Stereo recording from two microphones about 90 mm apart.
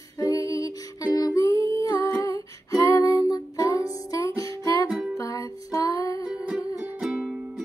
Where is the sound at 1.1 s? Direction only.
40° left (ahead or behind).